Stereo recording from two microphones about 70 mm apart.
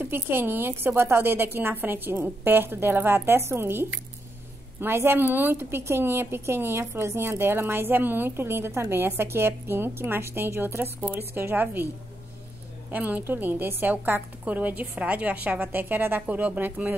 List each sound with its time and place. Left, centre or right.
0.0 s a woman's voice: right
12.9 s a woman's voice: right